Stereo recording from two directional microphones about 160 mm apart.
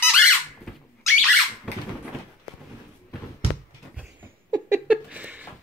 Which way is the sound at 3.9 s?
10° right (ahead or behind).